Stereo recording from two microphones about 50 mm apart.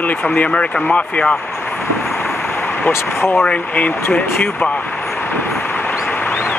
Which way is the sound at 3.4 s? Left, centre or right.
Left.